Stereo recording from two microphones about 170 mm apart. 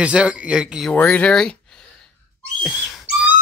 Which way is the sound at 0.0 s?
5° right (ahead or behind).